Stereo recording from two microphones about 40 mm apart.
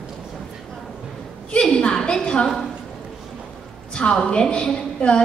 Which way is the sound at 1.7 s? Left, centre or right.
Left.